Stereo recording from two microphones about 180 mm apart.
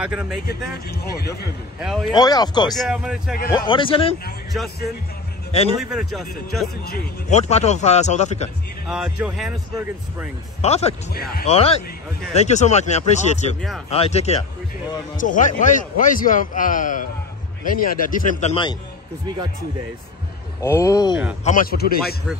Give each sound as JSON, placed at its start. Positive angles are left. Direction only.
{"t": 0.0, "sound": "speech", "side_deg": -5}
{"t": 1.1, "sound": "speech", "side_deg": 60}
{"t": 1.8, "sound": "speech", "side_deg": 0}
{"t": 2.1, "sound": "a man's voice", "side_deg": 20}
{"t": 2.7, "sound": "speech", "side_deg": 0}
{"t": 3.5, "sound": "a man's voice", "side_deg": 25}
{"t": 5.8, "sound": "speech", "side_deg": 0}
{"t": 7.2, "sound": "speech", "side_deg": 40}
{"t": 8.8, "sound": "speech", "side_deg": -5}
{"t": 10.6, "sound": "a man's voice", "side_deg": 35}
{"t": 18.5, "sound": "a man's voice", "side_deg": 25}
{"t": 19.2, "sound": "speech", "side_deg": -25}
{"t": 20.6, "sound": "speech", "side_deg": 15}
{"t": 21.5, "sound": "speech", "side_deg": 50}